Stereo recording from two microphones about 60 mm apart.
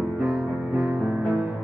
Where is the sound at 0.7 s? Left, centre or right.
Right.